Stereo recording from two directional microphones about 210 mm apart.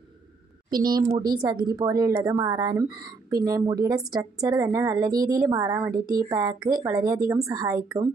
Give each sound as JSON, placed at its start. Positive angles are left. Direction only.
{"t": 0.7, "sound": "a woman's voice", "side_deg": -20}